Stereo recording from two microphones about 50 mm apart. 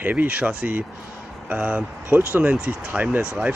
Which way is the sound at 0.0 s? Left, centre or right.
Right.